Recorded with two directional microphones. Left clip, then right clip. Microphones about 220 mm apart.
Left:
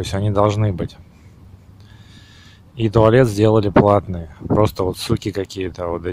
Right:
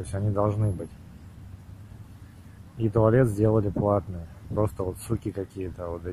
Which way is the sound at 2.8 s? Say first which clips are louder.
Left 9 dB; 30° left (ahead or behind).